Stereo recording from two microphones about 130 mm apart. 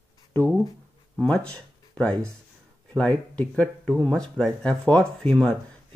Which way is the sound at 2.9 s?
10° left (ahead or behind).